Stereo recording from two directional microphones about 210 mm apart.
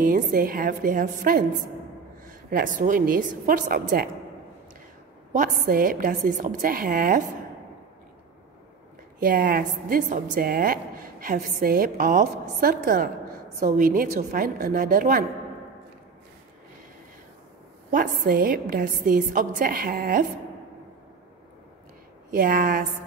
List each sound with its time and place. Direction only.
0.0 s a woman's voice: 40° right (ahead or behind)
2.5 s a woman's voice: 40° right (ahead or behind)
5.3 s a woman's voice: 40° right (ahead or behind)
9.2 s a woman's voice: 40° right (ahead or behind)
17.9 s a woman's voice: 40° right (ahead or behind)
22.4 s a woman's voice: 40° right (ahead or behind)